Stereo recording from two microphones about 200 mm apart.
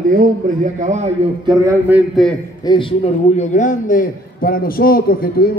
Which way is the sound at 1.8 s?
5° right (ahead or behind).